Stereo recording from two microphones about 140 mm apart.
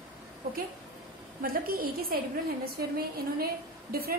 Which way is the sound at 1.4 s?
90° right.